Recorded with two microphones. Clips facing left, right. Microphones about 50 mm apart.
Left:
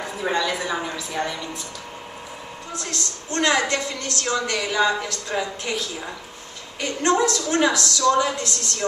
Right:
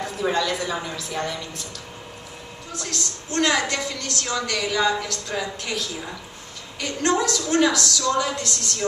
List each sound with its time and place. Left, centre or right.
0.0 s a woman's voice: centre
2.8 s a woman's voice: centre